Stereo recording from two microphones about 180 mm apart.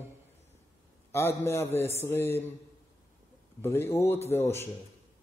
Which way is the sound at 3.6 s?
15° left (ahead or behind).